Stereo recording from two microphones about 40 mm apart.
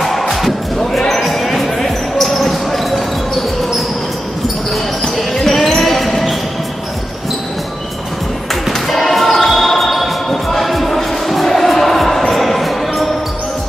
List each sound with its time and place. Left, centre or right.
0.0 s music: centre
0.7 s basketball bounce: centre
5.1 s basketball bounce: centre
8.9 s choir: centre